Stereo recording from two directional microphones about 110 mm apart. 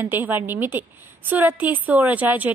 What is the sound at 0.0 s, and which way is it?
A woman's voice, 20° right (ahead or behind).